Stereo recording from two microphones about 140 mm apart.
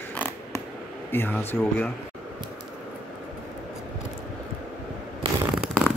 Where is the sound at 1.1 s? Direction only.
15° left (ahead or behind).